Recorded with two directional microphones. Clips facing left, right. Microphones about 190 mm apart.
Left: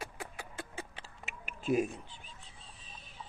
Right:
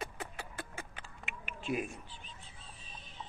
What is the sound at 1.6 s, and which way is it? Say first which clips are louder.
Speech: left 6 dB; 40° left (ahead or behind).